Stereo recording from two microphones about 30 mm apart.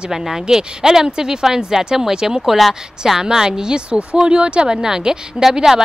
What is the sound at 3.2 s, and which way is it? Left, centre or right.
Speech, right.